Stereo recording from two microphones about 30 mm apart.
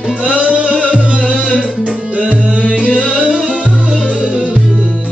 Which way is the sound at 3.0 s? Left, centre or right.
Right.